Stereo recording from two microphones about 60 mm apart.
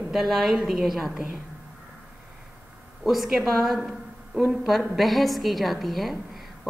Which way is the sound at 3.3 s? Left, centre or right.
Centre.